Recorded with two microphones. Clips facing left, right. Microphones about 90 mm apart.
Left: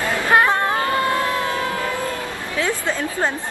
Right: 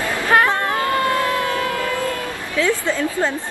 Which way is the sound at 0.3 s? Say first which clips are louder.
Even; 20° left (ahead or behind).